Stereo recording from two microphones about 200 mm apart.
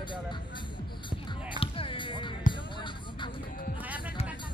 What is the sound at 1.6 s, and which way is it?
Music, 25° left (ahead or behind).